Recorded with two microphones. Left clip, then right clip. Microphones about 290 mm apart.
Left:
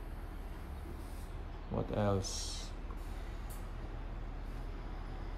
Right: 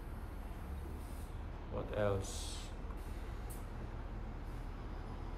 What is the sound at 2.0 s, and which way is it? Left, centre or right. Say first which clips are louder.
Speech: left 1 dB; centre.